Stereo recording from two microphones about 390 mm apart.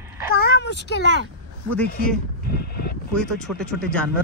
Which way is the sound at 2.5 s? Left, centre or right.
Left.